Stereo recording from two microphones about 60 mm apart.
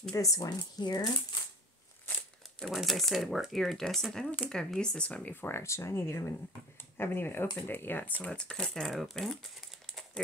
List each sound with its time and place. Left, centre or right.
0.1 s speech: left
2.6 s speech: centre
5.3 s speech: left
5.6 s speech: left
8.3 s speech: centre